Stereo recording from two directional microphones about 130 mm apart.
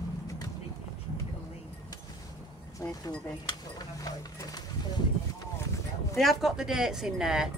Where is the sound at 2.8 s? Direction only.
25° left (ahead or behind).